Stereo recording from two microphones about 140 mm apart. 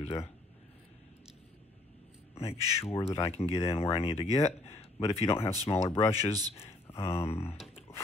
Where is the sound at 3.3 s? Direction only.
45° left (ahead or behind).